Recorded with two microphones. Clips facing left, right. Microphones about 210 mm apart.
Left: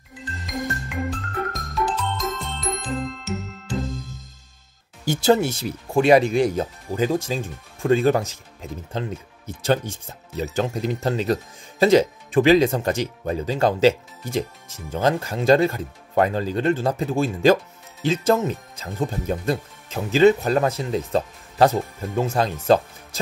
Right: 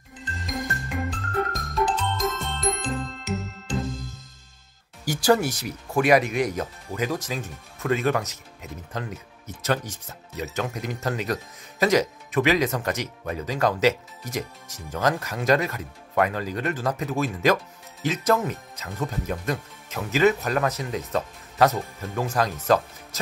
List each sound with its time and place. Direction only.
1.2 s music: centre (ahead or behind)
3.3 s music: 15° right (ahead or behind)
3.7 s music: centre (ahead or behind)
5.0 s speech: 25° left (ahead or behind)